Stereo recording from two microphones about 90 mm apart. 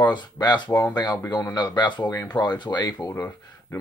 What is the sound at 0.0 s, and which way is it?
Speech, 55° left (ahead or behind).